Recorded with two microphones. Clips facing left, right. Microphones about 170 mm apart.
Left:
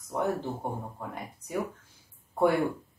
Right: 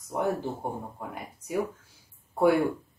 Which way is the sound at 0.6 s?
10° right (ahead or behind).